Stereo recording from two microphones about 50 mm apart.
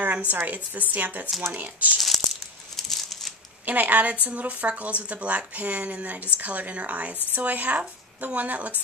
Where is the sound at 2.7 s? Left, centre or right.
Centre.